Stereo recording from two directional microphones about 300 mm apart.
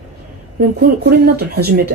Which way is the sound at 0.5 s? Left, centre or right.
Right.